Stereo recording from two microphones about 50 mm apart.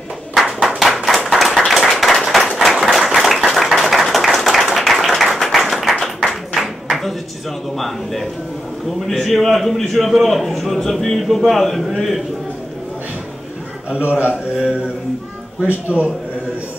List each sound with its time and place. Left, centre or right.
0.4 s clapping: centre
2.5 s a sound: centre
3.0 s clapping: centre
6.2 s a sound: centre
7.7 s a man's voice: centre
15.6 s a man's voice: right